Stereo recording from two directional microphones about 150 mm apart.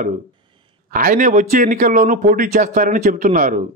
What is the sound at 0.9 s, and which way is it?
A man's voice, 65° right (ahead or behind).